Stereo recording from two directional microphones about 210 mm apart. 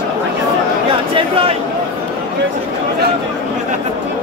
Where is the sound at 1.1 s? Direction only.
25° right (ahead or behind).